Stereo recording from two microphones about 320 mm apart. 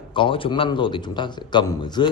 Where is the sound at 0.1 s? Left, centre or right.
Centre.